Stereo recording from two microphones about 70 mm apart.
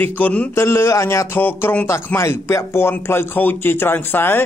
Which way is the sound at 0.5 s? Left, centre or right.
Left.